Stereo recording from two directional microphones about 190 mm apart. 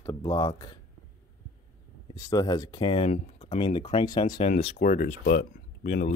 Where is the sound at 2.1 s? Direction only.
20° left (ahead or behind).